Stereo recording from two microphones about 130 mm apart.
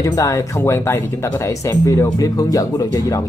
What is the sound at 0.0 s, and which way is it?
Speech, 25° left (ahead or behind).